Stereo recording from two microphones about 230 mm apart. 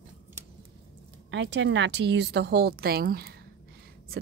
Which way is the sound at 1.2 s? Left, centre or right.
Right.